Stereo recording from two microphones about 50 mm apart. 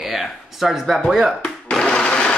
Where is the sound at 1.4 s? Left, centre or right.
Centre.